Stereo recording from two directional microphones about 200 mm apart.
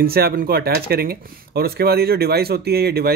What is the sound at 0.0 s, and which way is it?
Speech, 50° right (ahead or behind).